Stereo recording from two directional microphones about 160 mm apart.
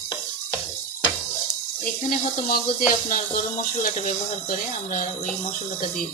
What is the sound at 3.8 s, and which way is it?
Speech, 50° left (ahead or behind).